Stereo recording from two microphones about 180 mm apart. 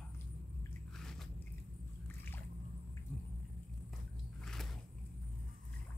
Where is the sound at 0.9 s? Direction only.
5° left (ahead or behind).